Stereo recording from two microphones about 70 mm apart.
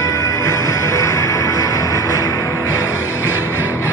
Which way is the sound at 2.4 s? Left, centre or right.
Left.